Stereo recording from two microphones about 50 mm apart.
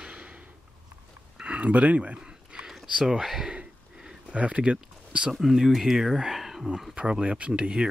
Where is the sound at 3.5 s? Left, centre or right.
Centre.